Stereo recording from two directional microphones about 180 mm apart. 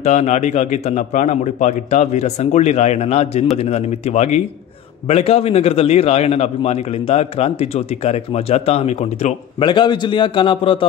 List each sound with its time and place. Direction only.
0.0 s a man's voice: 40° left (ahead or behind)